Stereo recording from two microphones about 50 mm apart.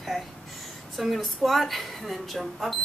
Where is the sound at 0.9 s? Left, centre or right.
Centre.